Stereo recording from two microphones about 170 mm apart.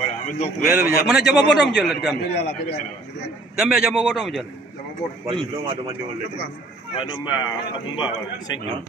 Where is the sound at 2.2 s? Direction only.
70° left (ahead or behind).